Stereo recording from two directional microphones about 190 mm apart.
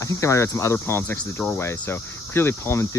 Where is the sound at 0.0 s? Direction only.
15° left (ahead or behind).